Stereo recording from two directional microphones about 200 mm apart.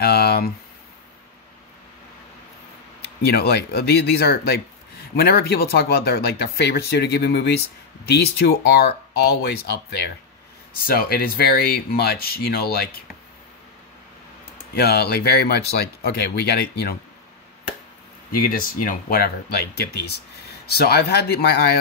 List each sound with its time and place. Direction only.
0.0 s speech: 50° left (ahead or behind)
3.0 s speech: 55° left (ahead or behind)
14.7 s speech: 50° left (ahead or behind)
18.3 s speech: 45° left (ahead or behind)